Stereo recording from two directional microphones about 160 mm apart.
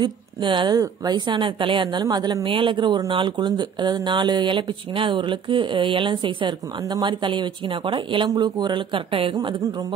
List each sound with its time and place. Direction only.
0.0 s a woman's voice: 30° right (ahead or behind)